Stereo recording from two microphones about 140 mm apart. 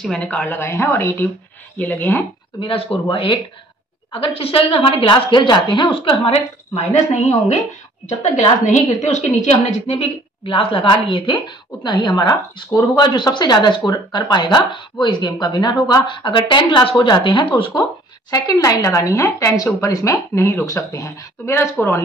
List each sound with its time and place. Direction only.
0.0 s a woman's voice: 5° left (ahead or behind)
2.6 s a woman's voice: 45° left (ahead or behind); by 22.0 s 15° left (ahead or behind)